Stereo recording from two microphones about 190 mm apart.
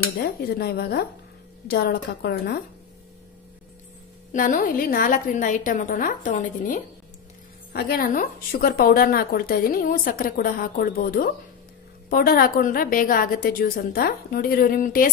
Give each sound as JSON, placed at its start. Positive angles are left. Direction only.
{"t": 0.2, "sound": "a woman's voice", "side_deg": 55}
{"t": 4.3, "sound": "a woman's voice", "side_deg": 45}